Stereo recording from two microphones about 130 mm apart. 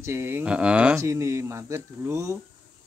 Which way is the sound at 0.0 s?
20° right (ahead or behind).